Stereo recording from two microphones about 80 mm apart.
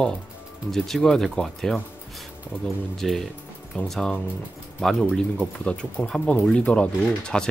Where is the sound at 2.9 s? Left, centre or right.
Centre.